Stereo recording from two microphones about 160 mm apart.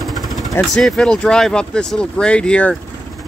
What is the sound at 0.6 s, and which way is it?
Speech, centre (ahead or behind).